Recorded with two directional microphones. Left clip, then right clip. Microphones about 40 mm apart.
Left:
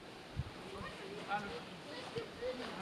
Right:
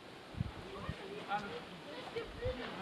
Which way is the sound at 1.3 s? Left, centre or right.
Centre.